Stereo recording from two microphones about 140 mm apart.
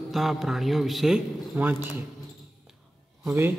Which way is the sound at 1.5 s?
15° right (ahead or behind).